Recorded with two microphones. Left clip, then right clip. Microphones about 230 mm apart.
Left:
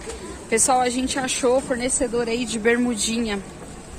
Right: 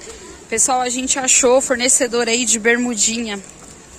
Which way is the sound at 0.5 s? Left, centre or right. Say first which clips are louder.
Right 1 dB; centre.